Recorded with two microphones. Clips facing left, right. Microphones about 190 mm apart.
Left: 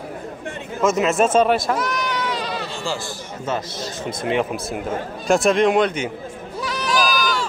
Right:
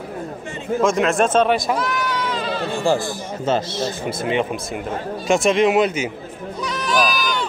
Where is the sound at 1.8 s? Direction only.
15° left (ahead or behind).